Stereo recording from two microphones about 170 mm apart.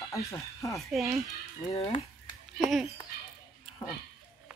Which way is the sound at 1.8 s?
35° left (ahead or behind).